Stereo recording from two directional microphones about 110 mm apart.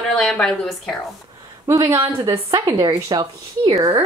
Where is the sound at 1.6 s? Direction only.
35° right (ahead or behind).